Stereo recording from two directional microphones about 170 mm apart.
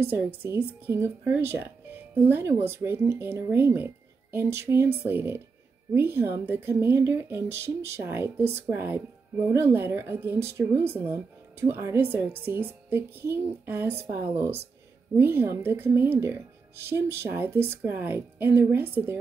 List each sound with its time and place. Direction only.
0.4 s a woman's voice: 15° right (ahead or behind)
14.0 s speech: 40° right (ahead or behind)
15.1 s a woman's voice: 15° right (ahead or behind)